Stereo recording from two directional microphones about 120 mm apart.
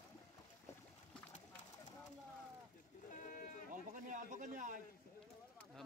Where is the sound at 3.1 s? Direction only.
90° left.